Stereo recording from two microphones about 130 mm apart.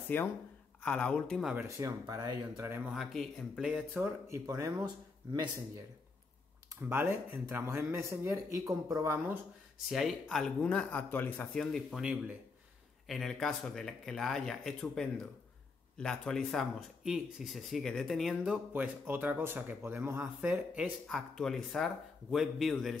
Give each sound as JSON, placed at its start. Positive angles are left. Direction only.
{"t": 0.1, "sound": "a man's voice", "side_deg": 15}
{"t": 1.8, "sound": "speech", "side_deg": -25}
{"t": 2.9, "sound": "speech", "side_deg": 0}
{"t": 3.9, "sound": "speech", "side_deg": -20}
{"t": 6.7, "sound": "speech", "side_deg": -20}
{"t": 9.8, "sound": "a man's voice", "side_deg": 0}
{"t": 11.5, "sound": "speech", "side_deg": 5}
{"t": 18.5, "sound": "speech", "side_deg": -15}
{"t": 21.1, "sound": "speech", "side_deg": 5}